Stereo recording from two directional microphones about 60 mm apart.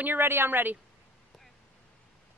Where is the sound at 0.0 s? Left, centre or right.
Right.